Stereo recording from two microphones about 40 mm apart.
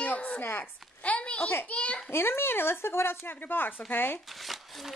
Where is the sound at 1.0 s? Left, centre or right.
Left.